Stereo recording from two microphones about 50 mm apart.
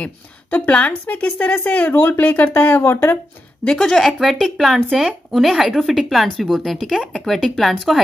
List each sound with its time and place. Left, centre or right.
0.0 s a woman's voice: left
1.5 s speech: left
3.6 s speech: centre
4.2 s speech: centre